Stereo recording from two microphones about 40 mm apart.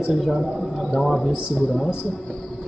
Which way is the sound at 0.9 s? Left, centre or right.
Centre.